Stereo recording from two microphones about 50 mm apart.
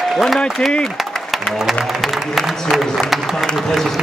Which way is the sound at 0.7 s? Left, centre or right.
Centre.